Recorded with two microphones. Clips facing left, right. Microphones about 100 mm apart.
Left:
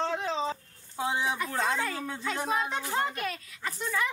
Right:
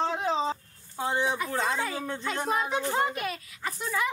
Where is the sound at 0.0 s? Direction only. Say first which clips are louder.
Right 3 dB; 15° right (ahead or behind).